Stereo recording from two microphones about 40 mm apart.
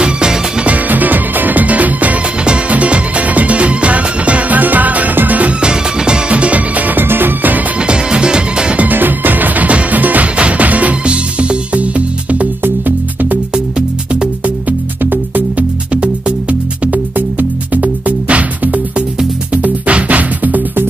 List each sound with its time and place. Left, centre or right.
0.0 s music: right
0.7 s music: right
5.6 s music: right
7.0 s music: right
7.8 s music: right
8.8 s music: right
12.6 s music: right
14.4 s music: right
15.9 s music: right